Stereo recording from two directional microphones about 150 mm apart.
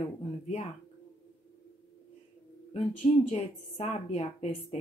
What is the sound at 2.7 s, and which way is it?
A woman's voice, 45° left (ahead or behind).